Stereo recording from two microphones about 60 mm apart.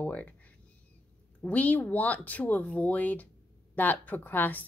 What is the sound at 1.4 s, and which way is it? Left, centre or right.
Speech, left.